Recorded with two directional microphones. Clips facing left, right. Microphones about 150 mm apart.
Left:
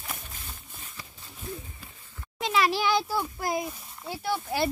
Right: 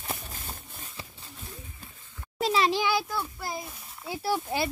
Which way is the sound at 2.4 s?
30° right (ahead or behind).